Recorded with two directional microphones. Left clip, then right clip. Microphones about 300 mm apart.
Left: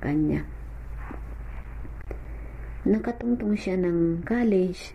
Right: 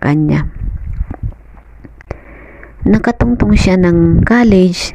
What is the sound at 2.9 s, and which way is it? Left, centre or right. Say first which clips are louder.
A woman's voice: right 13 dB; right.